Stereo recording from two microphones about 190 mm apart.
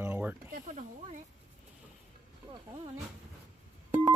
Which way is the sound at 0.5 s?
40° right (ahead or behind).